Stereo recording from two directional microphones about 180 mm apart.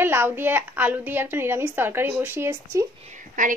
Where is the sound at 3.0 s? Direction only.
45° right (ahead or behind).